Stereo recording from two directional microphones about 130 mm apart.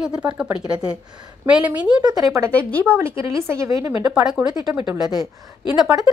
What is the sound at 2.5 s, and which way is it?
Speech, 10° left (ahead or behind).